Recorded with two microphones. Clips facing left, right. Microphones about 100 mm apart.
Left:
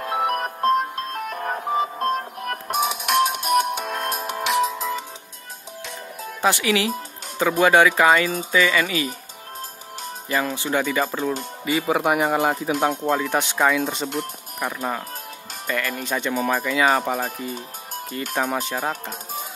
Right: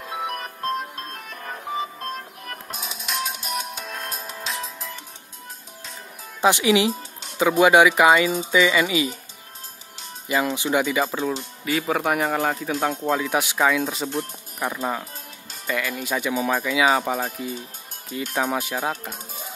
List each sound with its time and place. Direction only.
0.0 s music: 60° left (ahead or behind); by 5.0 s 90° left
6.4 s speech: 20° right (ahead or behind)
10.2 s speech: 15° right (ahead or behind)
11.1 s speech: centre (ahead or behind)
13.1 s speech: 5° right (ahead or behind)